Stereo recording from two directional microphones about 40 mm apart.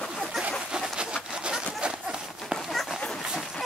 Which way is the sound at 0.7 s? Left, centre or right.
Right.